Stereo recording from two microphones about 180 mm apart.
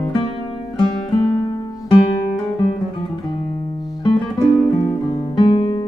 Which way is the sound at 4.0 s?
25° left (ahead or behind).